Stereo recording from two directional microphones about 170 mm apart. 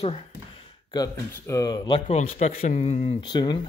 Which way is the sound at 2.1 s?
40° left (ahead or behind).